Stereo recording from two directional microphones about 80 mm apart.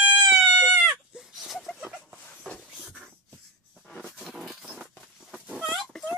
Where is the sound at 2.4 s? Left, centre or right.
Centre.